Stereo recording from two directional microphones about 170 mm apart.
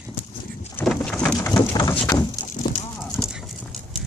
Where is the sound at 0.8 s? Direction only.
5° left (ahead or behind).